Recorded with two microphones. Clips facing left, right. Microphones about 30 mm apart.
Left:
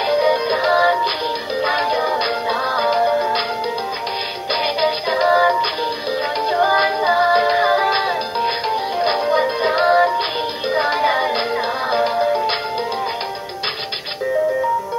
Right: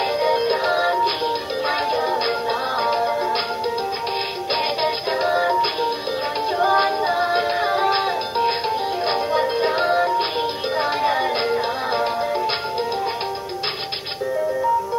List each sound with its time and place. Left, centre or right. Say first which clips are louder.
0.2 s music: left 2 dB; left
4.6 s music: left 4 dB; left
6.5 s music: left 2 dB; left
6.8 s music: left 4 dB; left
9.8 s music: left 7 dB; left